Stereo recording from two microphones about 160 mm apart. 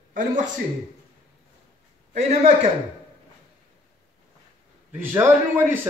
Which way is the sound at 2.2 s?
40° right (ahead or behind).